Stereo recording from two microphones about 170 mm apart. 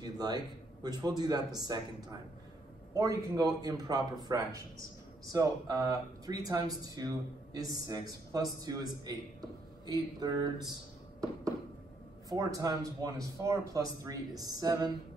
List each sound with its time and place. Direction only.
0.0 s a sound: 25° right (ahead or behind)
0.8 s speech: 25° right (ahead or behind)
2.9 s speech: 20° right (ahead or behind)
12.3 s speech: 20° right (ahead or behind)